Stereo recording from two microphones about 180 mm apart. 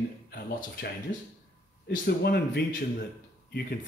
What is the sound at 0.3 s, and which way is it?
Speech, 55° left (ahead or behind).